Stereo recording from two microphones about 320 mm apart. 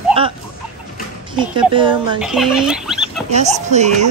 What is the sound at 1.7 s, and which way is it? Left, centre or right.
Speech, centre.